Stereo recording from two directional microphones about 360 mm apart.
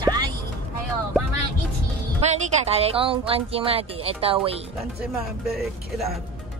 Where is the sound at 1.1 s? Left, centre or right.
Centre.